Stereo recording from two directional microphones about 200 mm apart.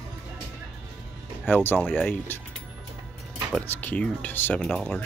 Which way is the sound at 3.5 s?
10° left (ahead or behind).